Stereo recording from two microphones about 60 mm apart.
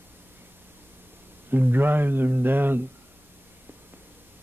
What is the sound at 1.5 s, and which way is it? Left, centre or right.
Speech, right.